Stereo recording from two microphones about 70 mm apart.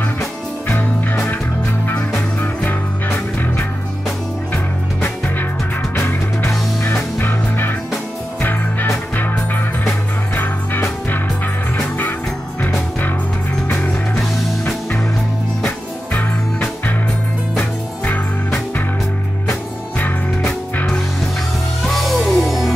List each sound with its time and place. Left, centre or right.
0.7 s music: left
5.9 s music: left
13.8 s music: left
20.0 s music: left
21.8 s music: centre